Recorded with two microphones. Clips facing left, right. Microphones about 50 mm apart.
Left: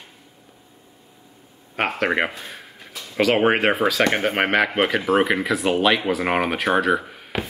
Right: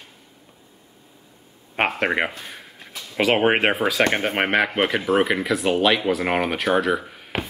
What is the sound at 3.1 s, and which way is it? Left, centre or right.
Speech, centre.